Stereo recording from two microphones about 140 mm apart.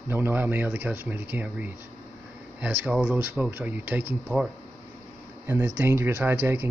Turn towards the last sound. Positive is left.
turn(degrees=-15)  # may be behind; listen again after turning